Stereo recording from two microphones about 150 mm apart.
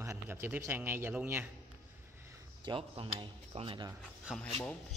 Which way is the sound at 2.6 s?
35° right (ahead or behind).